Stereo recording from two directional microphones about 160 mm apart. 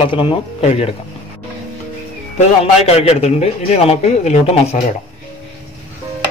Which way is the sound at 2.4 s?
40° left (ahead or behind).